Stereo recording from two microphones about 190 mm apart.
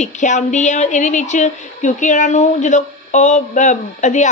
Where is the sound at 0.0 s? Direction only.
40° left (ahead or behind).